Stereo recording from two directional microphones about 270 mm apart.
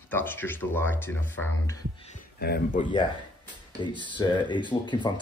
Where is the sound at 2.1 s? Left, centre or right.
Left.